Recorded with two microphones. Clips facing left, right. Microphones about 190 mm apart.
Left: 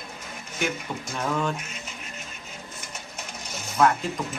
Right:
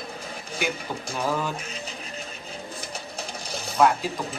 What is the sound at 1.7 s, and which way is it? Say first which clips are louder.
Music: right 4 dB; 35° right (ahead or behind).